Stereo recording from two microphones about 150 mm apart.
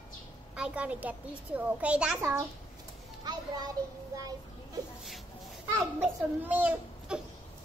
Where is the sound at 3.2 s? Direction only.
25° right (ahead or behind).